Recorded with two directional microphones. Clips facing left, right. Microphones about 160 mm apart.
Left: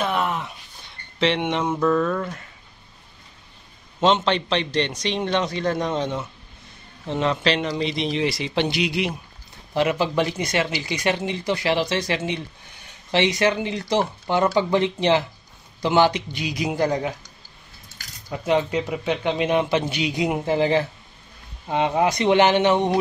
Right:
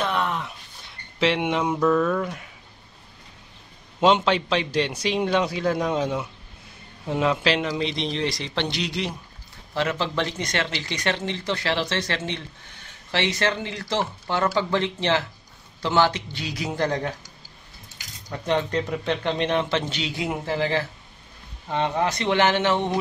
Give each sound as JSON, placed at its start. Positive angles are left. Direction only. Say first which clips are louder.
{"t": 0.0, "sound": "a sound", "louder": "left 2 dB", "side_deg": 5}
{"t": 4.0, "sound": "a man's voice", "louder": "even", "side_deg": -10}
{"t": 18.3, "sound": "speech", "louder": "left 3 dB", "side_deg": 5}